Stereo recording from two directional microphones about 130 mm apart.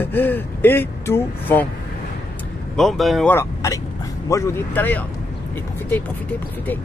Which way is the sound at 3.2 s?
20° left (ahead or behind).